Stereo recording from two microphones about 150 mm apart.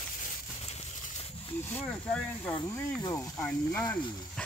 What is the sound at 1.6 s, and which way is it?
Speech, 10° left (ahead or behind).